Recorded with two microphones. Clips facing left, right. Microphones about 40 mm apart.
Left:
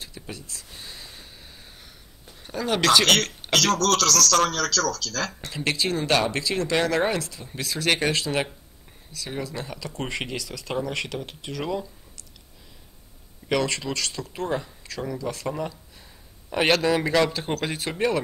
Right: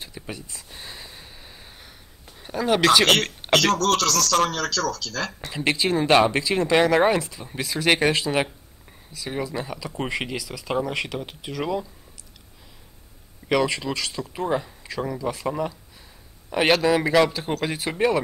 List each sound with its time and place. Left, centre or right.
0.0 s a sound: centre
2.3 s speech: centre
13.5 s speech: centre